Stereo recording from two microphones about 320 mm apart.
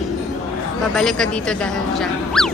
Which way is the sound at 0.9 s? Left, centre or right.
Centre.